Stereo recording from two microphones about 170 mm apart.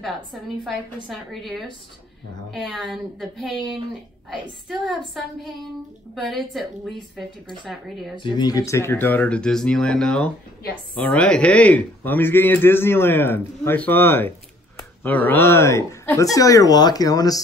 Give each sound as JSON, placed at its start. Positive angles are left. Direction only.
{"t": 0.0, "sound": "speech", "side_deg": 0}
{"t": 8.2, "sound": "a man's voice", "side_deg": 25}